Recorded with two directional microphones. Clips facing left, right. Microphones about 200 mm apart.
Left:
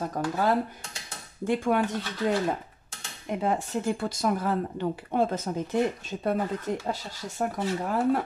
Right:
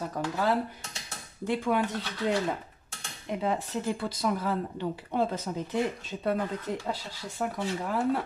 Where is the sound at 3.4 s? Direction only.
45° left (ahead or behind).